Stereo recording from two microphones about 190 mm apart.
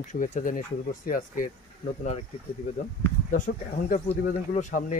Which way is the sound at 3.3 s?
40° left (ahead or behind).